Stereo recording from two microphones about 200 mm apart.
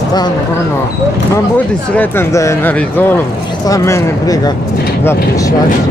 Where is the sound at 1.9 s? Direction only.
15° left (ahead or behind).